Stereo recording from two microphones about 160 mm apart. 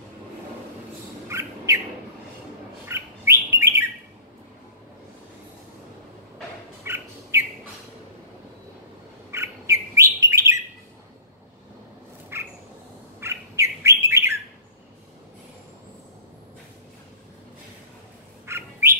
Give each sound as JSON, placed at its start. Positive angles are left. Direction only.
{"t": 1.3, "sound": "bird", "side_deg": -20}
{"t": 2.9, "sound": "bird", "side_deg": -15}
{"t": 6.8, "sound": "bird", "side_deg": -15}
{"t": 9.3, "sound": "bird", "side_deg": -15}
{"t": 12.3, "sound": "cat", "side_deg": -15}
{"t": 13.2, "sound": "bird", "side_deg": -15}
{"t": 18.5, "sound": "bird", "side_deg": -15}